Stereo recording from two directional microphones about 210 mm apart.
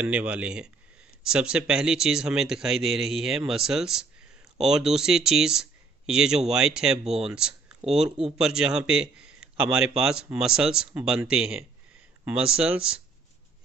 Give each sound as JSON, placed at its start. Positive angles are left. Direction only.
{"t": 0.0, "sound": "a man's voice", "side_deg": -5}
{"t": 7.8, "sound": "speech", "side_deg": -25}
{"t": 8.4, "sound": "a man's voice", "side_deg": -5}